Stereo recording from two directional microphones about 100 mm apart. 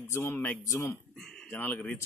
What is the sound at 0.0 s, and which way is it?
Speech, 25° left (ahead or behind).